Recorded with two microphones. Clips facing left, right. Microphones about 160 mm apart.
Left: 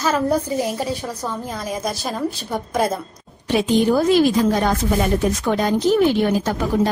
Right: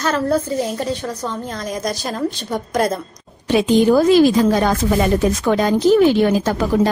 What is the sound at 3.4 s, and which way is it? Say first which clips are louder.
Speech: right 3 dB; 90° right.